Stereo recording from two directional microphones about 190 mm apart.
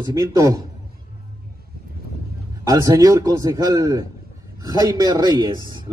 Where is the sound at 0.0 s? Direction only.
20° right (ahead or behind).